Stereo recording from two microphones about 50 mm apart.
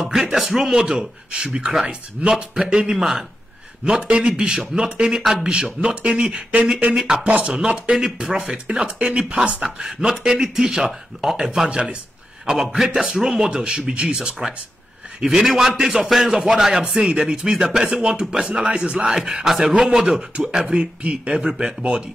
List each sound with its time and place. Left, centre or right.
0.0 s a man's voice: centre
7.0 s a man's voice: centre
7.2 s speech: right
7.8 s a man's voice: centre
9.6 s a man's voice: centre
14.4 s a man's voice: centre
18.5 s a man's voice: centre